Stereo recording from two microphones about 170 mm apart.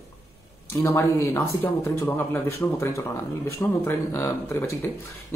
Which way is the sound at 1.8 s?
15° left (ahead or behind).